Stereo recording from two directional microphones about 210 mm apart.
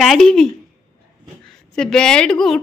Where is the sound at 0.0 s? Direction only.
Centre (ahead or behind).